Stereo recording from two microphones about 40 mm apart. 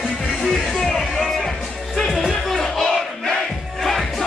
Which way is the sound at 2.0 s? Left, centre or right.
Centre.